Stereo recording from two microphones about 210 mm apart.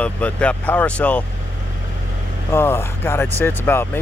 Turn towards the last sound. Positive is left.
turn(degrees=10)  # may be behind; listen again after turning